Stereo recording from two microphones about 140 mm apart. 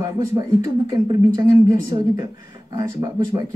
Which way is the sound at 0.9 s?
25° right (ahead or behind).